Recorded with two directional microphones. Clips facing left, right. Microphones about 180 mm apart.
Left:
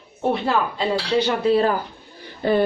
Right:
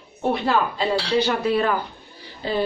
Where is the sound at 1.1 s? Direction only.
25° left (ahead or behind).